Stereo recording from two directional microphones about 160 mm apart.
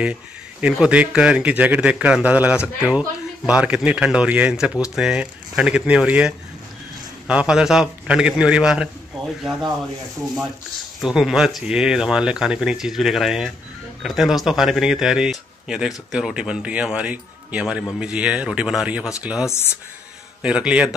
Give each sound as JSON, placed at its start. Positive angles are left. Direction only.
{"t": 0.0, "sound": "speech", "side_deg": -10}
{"t": 11.0, "sound": "speech", "side_deg": 0}
{"t": 19.5, "sound": "speech", "side_deg": 15}
{"t": 20.4, "sound": "speech", "side_deg": -5}